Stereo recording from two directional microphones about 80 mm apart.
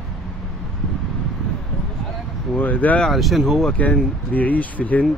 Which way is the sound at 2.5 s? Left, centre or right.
Left.